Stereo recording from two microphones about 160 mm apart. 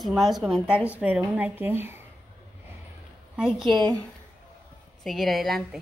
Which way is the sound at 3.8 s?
25° right (ahead or behind).